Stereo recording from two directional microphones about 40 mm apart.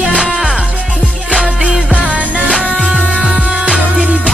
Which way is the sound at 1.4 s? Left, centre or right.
Right.